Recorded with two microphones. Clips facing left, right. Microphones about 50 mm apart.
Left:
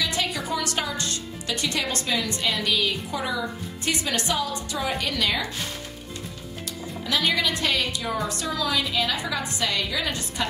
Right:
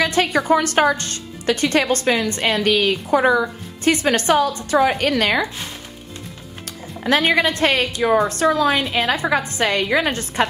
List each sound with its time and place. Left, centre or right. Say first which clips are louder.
0.0 s a woman's voice: right 9 dB; right
6.6 s a woman's voice: right 6 dB; right